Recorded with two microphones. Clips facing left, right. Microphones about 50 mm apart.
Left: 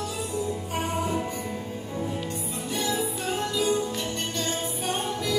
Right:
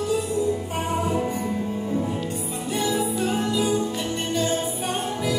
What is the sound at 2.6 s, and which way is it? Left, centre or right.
Music, centre.